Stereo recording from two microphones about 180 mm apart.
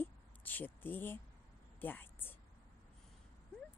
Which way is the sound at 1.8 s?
10° left (ahead or behind).